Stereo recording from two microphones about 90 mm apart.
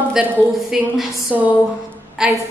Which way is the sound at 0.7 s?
5° right (ahead or behind).